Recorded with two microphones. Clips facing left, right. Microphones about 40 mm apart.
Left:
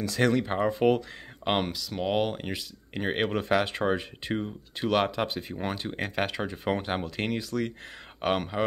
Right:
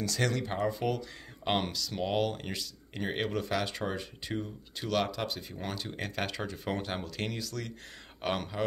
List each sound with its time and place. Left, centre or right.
0.0 s speech: left
1.4 s speech: centre
2.9 s speech: left